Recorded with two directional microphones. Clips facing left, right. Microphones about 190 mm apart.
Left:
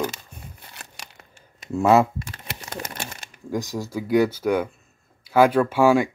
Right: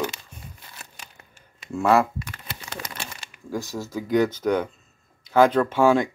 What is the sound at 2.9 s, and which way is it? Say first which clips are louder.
Crumpling: left 2 dB; 50° left (ahead or behind).